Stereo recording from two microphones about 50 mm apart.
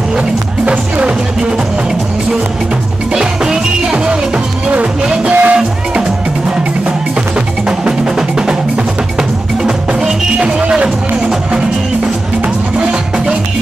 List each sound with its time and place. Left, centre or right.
0.7 s music: right
3.1 s music: centre
7.3 s music: centre
9.6 s music: centre
12.7 s music: right